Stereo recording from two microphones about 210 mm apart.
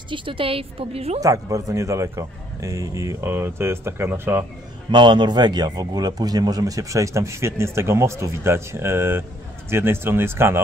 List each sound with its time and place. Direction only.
0.1 s a woman's voice: 25° right (ahead or behind)
1.2 s a man's voice: 15° right (ahead or behind)
4.9 s a man's voice: 20° right (ahead or behind)